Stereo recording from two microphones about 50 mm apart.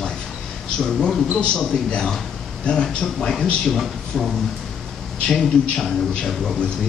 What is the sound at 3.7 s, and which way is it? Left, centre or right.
Speech, centre.